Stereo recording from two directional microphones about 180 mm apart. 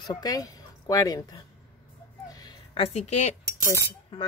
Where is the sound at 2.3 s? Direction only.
20° left (ahead or behind); by 3.3 s 40° left (ahead or behind).